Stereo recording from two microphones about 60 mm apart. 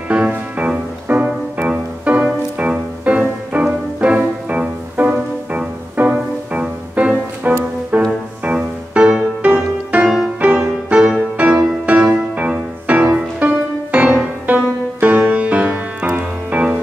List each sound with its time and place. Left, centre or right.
0.1 s music: right